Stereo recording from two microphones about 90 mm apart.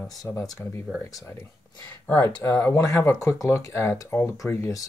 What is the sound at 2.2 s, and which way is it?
Speech, 40° left (ahead or behind).